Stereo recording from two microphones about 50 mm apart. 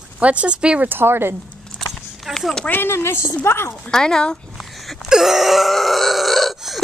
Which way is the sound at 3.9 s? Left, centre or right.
Centre.